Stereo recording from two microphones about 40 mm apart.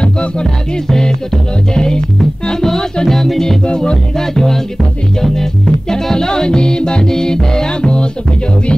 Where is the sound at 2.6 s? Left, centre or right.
Centre.